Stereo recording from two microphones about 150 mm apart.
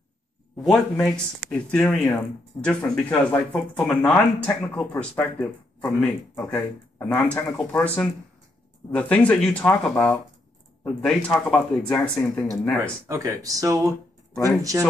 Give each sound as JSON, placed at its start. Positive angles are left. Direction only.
{"t": 0.6, "sound": "speech", "side_deg": 5}
{"t": 13.1, "sound": "speech", "side_deg": -20}